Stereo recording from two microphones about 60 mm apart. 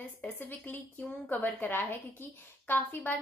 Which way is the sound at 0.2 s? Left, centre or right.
Left.